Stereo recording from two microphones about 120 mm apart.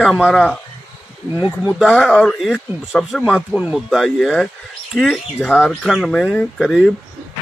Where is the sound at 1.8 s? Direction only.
Centre (ahead or behind).